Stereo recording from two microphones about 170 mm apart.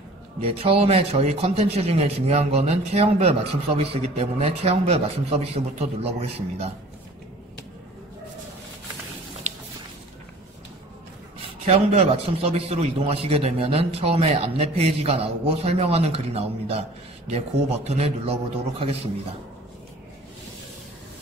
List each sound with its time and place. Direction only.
0.4 s speech: 35° right (ahead or behind)
11.6 s speech: 40° right (ahead or behind)
17.8 s speech: 40° right (ahead or behind)